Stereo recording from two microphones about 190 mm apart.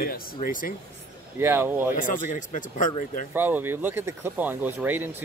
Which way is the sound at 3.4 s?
10° right (ahead or behind).